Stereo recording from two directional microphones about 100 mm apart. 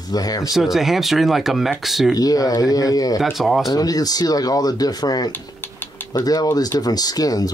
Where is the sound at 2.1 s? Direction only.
40° left (ahead or behind).